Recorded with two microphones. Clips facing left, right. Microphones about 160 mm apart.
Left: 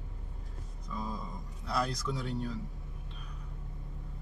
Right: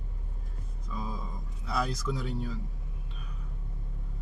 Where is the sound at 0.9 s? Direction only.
5° right (ahead or behind).